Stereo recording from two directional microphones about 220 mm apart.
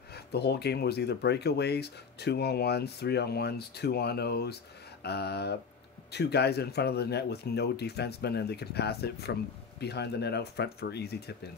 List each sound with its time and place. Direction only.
0.1 s speech: 45° left (ahead or behind)